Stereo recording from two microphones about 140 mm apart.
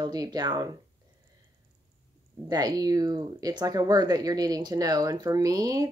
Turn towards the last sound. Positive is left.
turn(degrees=-25)  # may be behind; listen again after turning